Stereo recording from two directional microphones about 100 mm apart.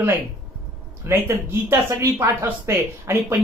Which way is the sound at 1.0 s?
25° right (ahead or behind).